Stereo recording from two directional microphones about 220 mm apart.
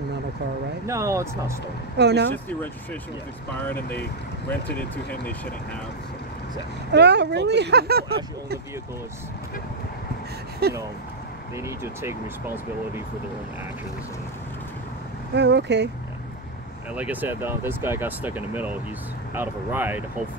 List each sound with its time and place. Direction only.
0.8 s speech: 15° right (ahead or behind)
2.0 s speech: 50° right (ahead or behind)
2.3 s speech: 10° left (ahead or behind)
6.9 s speech: 50° right (ahead or behind)
10.6 s speech: 45° right (ahead or behind)
11.5 s speech: 10° right (ahead or behind)
15.3 s speech: 50° right (ahead or behind)
16.9 s speech: 5° right (ahead or behind)